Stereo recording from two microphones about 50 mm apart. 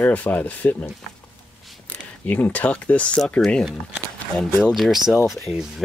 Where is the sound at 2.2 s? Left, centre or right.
Left.